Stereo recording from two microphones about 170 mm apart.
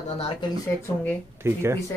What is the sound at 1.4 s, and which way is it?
Speech, 15° right (ahead or behind).